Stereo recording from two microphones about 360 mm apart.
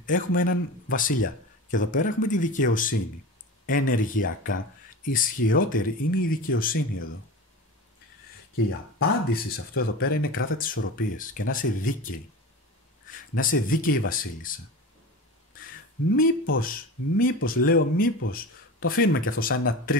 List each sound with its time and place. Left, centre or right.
0.0 s speech: left
8.6 s speech: left
13.1 s speech: left
16.1 s speech: left